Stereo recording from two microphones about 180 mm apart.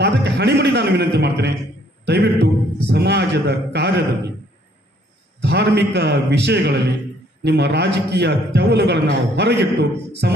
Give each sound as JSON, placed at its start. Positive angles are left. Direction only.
{"t": 0.0, "sound": "a sound", "side_deg": -70}
{"t": 2.0, "sound": "a man's voice", "side_deg": -70}
{"t": 5.4, "sound": "a man's voice", "side_deg": -70}